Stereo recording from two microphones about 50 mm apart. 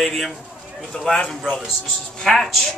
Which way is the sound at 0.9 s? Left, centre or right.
Centre.